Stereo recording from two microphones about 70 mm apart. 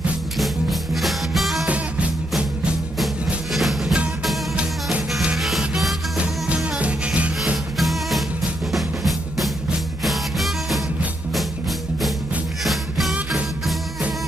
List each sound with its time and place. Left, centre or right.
0.4 s music: centre
3.5 s music: centre
5.2 s music: centre
6.5 s music: centre
7.7 s music: centre
12.6 s music: centre